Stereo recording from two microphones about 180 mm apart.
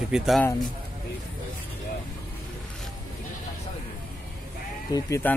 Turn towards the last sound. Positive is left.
turn(degrees=15)  # may be behind; listen again after turning